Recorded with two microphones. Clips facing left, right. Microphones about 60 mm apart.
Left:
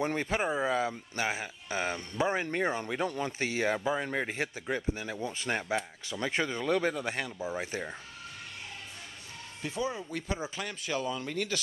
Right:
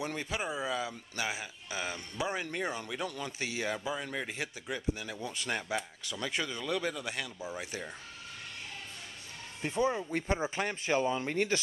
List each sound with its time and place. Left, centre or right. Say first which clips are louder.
0.0 s speech: left 5 dB; left
9.6 s speech: right 3 dB; right